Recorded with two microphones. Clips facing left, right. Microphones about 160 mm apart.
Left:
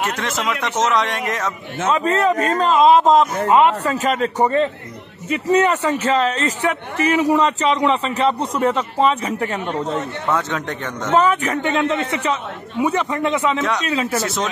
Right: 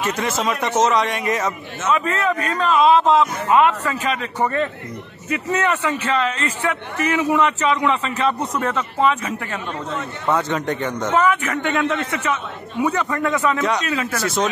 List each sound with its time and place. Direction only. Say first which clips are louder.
0.2 s speech: right 1 dB; centre (ahead or behind)
1.9 s a man's voice: left 3 dB; 35° left (ahead or behind)
4.4 s speech: left 3 dB; 25° left (ahead or behind)
5.3 s a man's voice: left 5 dB; 35° left (ahead or behind)
10.2 s speech: right 4 dB; centre (ahead or behind)
11.1 s a man's voice: left 3 dB; 35° left (ahead or behind)
11.7 s speech: left 1 dB; 25° left (ahead or behind)
13.6 s speech: even; centre (ahead or behind)
13.8 s speech: left 3 dB; 25° left (ahead or behind)
14.2 s speech: right 2 dB; centre (ahead or behind)